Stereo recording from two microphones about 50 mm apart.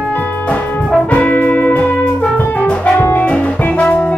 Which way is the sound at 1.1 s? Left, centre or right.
Left.